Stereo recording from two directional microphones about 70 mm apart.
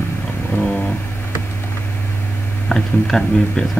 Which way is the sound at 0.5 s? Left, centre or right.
Centre.